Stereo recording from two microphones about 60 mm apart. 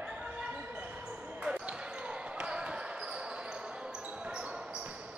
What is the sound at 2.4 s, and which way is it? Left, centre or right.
Basketball bounce, centre.